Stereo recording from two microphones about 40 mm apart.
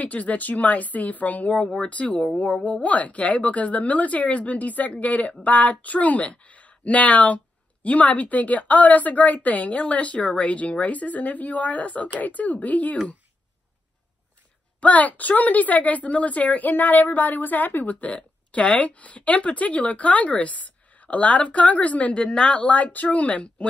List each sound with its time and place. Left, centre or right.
0.0 s a woman's voice: left
14.8 s a woman's voice: left
18.0 s a woman's voice: left
22.2 s speech: left
22.7 s a woman's voice: left